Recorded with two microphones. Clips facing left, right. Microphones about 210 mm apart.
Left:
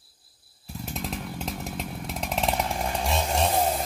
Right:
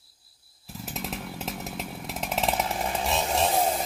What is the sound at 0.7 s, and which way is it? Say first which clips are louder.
Chainsaw: left 2 dB; centre (ahead or behind).